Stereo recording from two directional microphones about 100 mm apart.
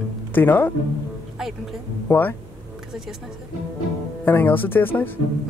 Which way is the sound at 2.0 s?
20° left (ahead or behind).